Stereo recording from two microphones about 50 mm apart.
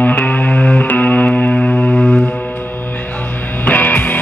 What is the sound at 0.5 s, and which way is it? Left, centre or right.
Music, centre.